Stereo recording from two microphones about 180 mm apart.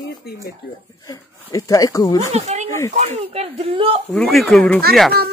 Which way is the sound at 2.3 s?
40° right (ahead or behind).